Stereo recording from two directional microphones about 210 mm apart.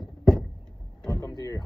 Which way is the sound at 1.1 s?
20° left (ahead or behind).